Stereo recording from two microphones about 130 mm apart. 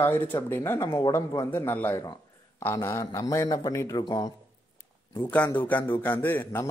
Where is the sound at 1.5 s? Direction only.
15° left (ahead or behind); by 4.3 s 35° left (ahead or behind).